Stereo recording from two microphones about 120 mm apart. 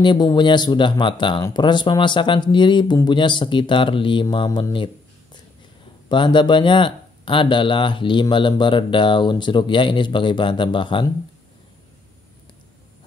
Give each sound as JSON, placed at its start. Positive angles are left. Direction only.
{"t": 0.0, "sound": "speech", "side_deg": 40}
{"t": 4.7, "sound": "a sound", "side_deg": 45}
{"t": 6.0, "sound": "speech", "side_deg": 40}